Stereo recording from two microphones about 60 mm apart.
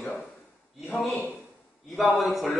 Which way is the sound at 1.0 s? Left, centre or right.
Left.